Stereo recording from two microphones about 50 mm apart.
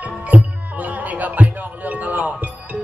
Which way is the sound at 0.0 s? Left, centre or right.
Right.